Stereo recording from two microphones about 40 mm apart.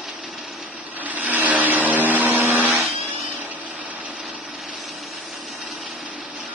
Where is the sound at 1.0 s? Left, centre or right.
Right.